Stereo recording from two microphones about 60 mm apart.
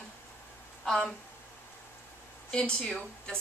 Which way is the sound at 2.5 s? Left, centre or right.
Centre.